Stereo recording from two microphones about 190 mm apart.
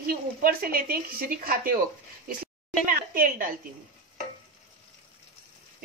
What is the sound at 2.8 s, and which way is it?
Speech, 45° right (ahead or behind).